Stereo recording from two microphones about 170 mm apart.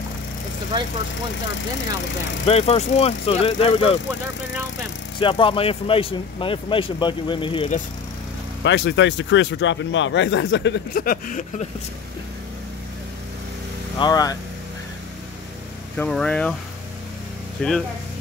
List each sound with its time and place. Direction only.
0.7 s speech: 25° right (ahead or behind)
2.4 s speech: 35° left (ahead or behind)
5.2 s speech: 30° left (ahead or behind)
8.6 s speech: 90° left; by 11.6 s 50° left (ahead or behind)
13.9 s speech: 25° left (ahead or behind)
16.0 s speech: 5° left (ahead or behind)
17.6 s speech: 5° left (ahead or behind)